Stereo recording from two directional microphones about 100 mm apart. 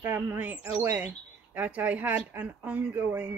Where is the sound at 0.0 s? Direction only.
20° right (ahead or behind).